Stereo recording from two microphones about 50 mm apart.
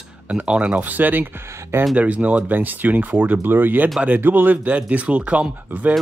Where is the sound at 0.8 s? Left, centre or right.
Right.